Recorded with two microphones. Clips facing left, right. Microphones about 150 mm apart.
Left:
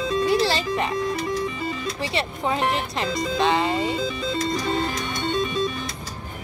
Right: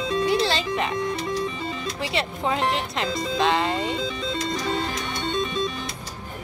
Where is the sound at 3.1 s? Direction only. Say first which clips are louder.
Left 1 dB; 30° right (ahead or behind).